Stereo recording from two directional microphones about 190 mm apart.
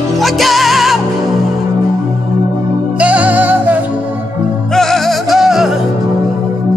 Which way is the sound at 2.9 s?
5° right (ahead or behind).